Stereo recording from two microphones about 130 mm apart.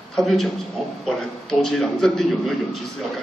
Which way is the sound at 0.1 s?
Centre (ahead or behind).